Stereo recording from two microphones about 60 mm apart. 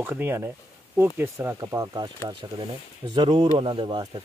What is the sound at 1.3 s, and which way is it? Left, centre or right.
Speech, right.